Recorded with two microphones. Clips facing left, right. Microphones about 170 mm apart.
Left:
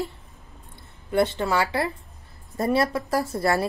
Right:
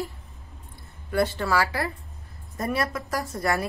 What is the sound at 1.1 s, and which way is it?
A woman's voice, 20° left (ahead or behind).